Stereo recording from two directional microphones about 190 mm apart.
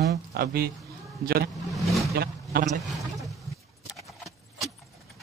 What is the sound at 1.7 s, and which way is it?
Vehicle, centre (ahead or behind).